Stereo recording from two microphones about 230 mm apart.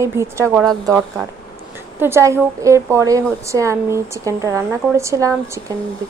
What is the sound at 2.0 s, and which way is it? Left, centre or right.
A woman's voice, centre.